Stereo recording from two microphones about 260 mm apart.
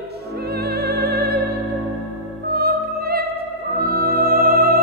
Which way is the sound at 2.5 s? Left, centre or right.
Right.